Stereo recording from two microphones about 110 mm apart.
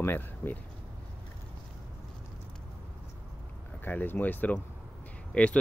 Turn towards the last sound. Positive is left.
turn(degrees=10)  # may be behind; listen again after turning